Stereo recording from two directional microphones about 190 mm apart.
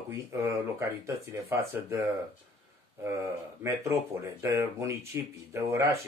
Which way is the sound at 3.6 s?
15° right (ahead or behind).